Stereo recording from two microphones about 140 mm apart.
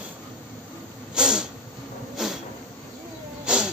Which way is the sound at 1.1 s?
5° right (ahead or behind).